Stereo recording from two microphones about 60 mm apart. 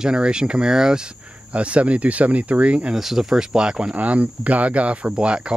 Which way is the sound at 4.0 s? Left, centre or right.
Right.